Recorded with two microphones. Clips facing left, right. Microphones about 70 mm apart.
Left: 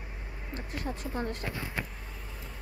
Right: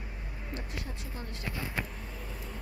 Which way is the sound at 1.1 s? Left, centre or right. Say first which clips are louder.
Left 8 dB; left.